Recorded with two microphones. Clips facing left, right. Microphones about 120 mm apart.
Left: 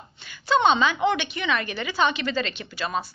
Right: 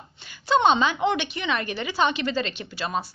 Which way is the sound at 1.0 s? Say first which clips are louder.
Left 1 dB; 30° right (ahead or behind).